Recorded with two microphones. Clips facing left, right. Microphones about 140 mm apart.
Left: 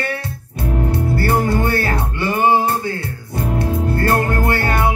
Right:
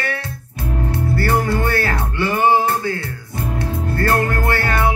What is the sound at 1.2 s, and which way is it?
Music, 15° left (ahead or behind).